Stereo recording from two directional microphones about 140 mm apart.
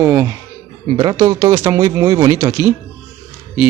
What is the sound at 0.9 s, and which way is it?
Speech, 30° right (ahead or behind).